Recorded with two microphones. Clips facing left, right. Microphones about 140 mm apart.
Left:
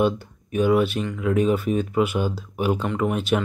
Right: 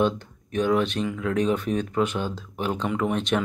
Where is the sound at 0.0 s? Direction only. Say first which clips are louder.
Left 2 dB; 10° left (ahead or behind).